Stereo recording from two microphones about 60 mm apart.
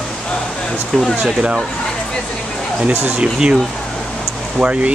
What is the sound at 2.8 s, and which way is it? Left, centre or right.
Speech, right.